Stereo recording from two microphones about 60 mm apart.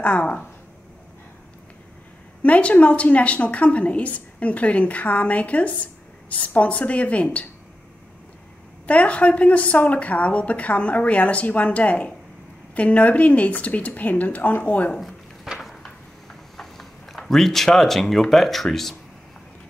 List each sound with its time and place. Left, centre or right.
0.0 s a woman's voice: left
2.4 s a woman's voice: left
8.8 s a woman's voice: left
15.0 s a sound: centre